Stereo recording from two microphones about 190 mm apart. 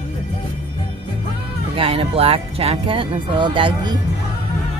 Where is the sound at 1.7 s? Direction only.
30° right (ahead or behind).